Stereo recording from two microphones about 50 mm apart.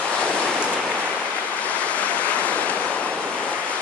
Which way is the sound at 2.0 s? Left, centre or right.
Left.